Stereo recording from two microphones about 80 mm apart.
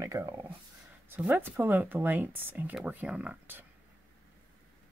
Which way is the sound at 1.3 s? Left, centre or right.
Right.